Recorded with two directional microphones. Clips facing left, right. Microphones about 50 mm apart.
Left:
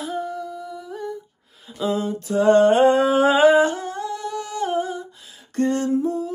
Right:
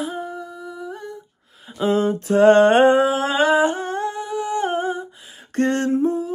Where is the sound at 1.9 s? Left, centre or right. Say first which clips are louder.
Right 5 dB; right.